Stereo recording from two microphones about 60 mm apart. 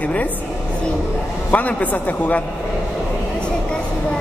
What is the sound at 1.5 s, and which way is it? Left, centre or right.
Speech, left.